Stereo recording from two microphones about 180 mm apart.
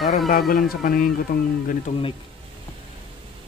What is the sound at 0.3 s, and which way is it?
Speech, 55° left (ahead or behind).